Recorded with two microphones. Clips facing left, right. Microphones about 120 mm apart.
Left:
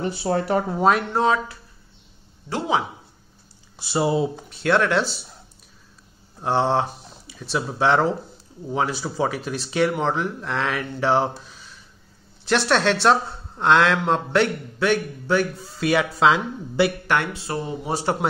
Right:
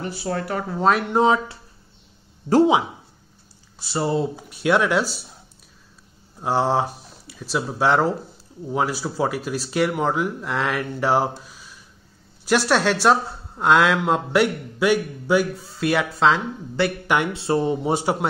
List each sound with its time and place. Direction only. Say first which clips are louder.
0.0 s speech: left 4 dB; 25° left (ahead or behind)
0.7 s speech: right 1 dB; 5° left (ahead or behind)
1.0 s speech: right 2 dB; 20° right (ahead or behind)
3.8 s speech: left 1 dB; 15° left (ahead or behind)
4.4 s speech: right 1 dB; 10° right (ahead or behind)
6.4 s speech: even; 5° right (ahead or behind)
17.3 s speech: right 7 dB; 25° right (ahead or behind)